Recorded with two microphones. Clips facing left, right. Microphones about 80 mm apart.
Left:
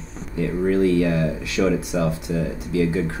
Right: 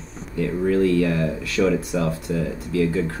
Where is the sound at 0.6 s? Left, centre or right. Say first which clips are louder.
Even; left.